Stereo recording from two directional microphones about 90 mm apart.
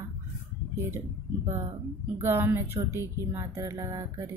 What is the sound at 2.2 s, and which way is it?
Speech, 25° right (ahead or behind).